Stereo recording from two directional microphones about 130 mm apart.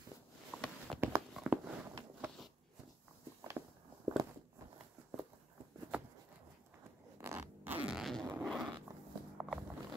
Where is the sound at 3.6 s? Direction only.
30° right (ahead or behind).